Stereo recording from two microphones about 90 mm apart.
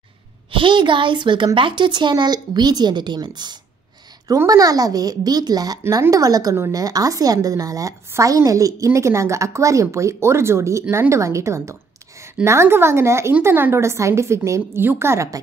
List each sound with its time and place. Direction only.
0.5 s a woman's voice: 65° right (ahead or behind)
4.5 s a child's voice: 45° right (ahead or behind); by 15.2 s 30° right (ahead or behind)